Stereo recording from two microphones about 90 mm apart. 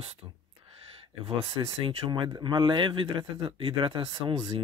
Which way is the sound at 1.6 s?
45° right (ahead or behind).